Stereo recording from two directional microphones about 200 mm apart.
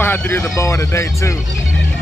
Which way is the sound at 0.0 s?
10° left (ahead or behind).